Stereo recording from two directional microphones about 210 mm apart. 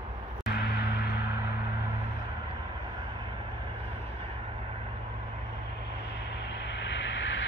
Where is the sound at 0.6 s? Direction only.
50° left (ahead or behind).